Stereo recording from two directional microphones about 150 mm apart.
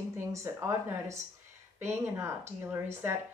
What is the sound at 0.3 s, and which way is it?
A woman's voice, 20° right (ahead or behind).